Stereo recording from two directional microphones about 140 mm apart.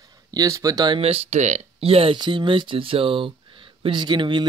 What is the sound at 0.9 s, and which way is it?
Speech, 45° right (ahead or behind).